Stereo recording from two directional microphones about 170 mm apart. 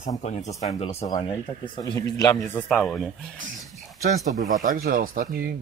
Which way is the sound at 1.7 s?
25° left (ahead or behind).